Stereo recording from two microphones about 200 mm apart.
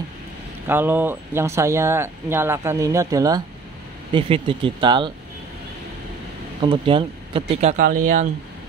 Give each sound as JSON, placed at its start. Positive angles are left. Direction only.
{"t": 0.7, "sound": "speech", "side_deg": -10}
{"t": 6.6, "sound": "speech", "side_deg": -25}